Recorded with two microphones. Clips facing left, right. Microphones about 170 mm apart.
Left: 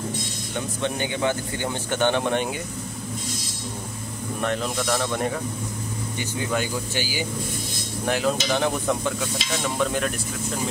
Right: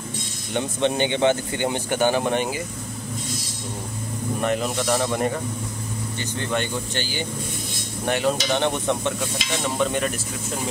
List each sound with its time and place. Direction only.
0.6 s speech: 25° right (ahead or behind); by 2.5 s centre (ahead or behind)
4.4 s speech: 5° right (ahead or behind)